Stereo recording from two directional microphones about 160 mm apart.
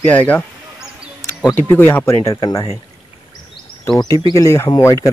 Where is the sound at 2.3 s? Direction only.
30° left (ahead or behind).